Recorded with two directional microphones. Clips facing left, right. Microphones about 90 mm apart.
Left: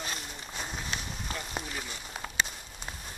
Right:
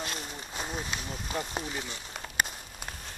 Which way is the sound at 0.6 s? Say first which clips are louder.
Right 3 dB; 5° right (ahead or behind).